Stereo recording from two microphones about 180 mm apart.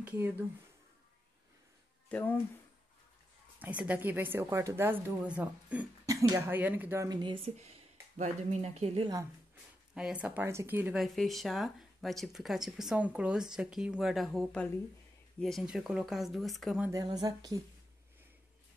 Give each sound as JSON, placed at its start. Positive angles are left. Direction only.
{"t": 0.0, "sound": "a sound", "side_deg": -10}
{"t": 2.0, "sound": "speech", "side_deg": 10}
{"t": 3.5, "sound": "a woman's voice", "side_deg": -10}
{"t": 9.9, "sound": "speech", "side_deg": -5}
{"t": 16.9, "sound": "speech", "side_deg": -20}